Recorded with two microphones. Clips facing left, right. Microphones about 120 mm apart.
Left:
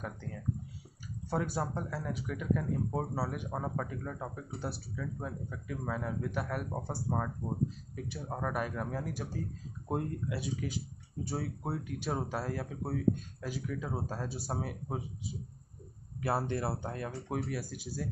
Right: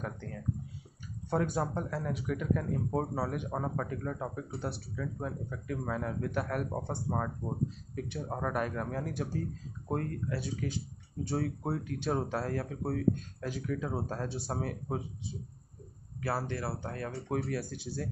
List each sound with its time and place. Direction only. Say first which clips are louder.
0.0 s speech: right 1 dB; 5° left (ahead or behind)
16.2 s speech: left 2 dB; 20° left (ahead or behind)
17.1 s speech: right 5 dB; 5° left (ahead or behind)